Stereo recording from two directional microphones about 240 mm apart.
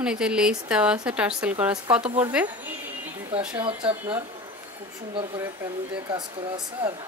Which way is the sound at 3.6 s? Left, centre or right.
Right.